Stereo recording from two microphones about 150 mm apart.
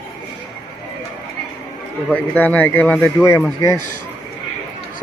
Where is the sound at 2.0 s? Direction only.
10° left (ahead or behind).